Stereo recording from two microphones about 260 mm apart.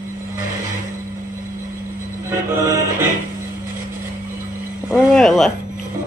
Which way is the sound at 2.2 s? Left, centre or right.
Centre.